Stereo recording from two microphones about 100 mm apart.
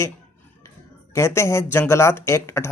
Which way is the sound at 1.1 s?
25° left (ahead or behind).